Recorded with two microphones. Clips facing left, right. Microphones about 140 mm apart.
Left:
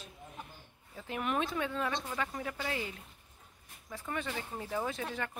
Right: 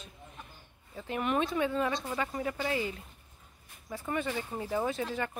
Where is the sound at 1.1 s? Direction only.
Centre (ahead or behind).